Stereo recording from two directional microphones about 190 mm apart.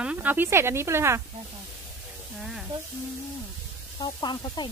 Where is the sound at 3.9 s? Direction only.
25° left (ahead or behind).